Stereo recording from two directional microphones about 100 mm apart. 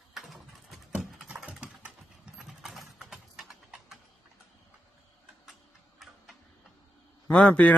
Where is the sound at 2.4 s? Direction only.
5° right (ahead or behind).